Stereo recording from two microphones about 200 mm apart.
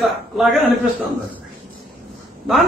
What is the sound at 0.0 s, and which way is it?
A man's voice, centre (ahead or behind).